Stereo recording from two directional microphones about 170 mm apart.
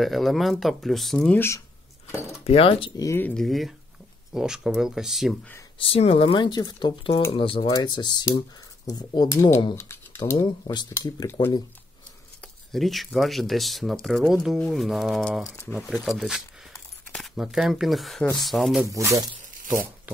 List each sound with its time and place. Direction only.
0.0 s speech: centre (ahead or behind)
2.4 s speech: 35° left (ahead or behind)
3.0 s speech: 15° left (ahead or behind); by 5.4 s centre (ahead or behind)
5.8 s speech: 35° left (ahead or behind)
10.9 s speech: 15° left (ahead or behind)
12.7 s speech: centre (ahead or behind)
18.9 s speech: 20° right (ahead or behind)